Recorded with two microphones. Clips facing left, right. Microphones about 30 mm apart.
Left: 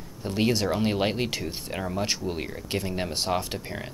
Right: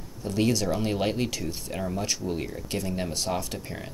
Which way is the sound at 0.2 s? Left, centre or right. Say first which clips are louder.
Even; left.